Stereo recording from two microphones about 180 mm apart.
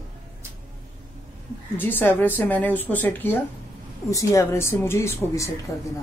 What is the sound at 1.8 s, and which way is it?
A woman's voice, 10° left (ahead or behind).